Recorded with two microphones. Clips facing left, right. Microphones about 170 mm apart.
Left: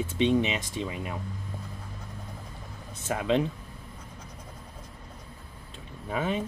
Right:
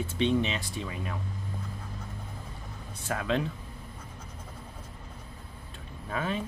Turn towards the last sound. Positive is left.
turn(degrees=20)  # may be behind; listen again after turning